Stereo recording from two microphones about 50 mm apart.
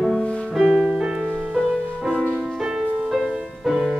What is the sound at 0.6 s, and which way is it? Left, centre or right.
Music, centre.